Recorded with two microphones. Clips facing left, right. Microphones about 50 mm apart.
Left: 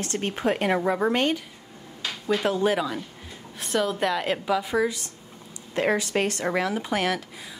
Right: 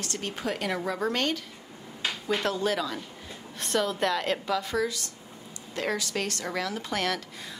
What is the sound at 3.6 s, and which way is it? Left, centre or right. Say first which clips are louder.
A woman's voice: left 2 dB; centre.